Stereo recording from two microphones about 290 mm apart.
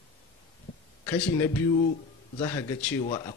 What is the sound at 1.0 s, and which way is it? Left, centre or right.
Speech, centre.